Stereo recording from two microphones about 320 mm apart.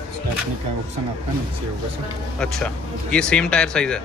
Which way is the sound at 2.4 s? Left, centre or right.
Centre.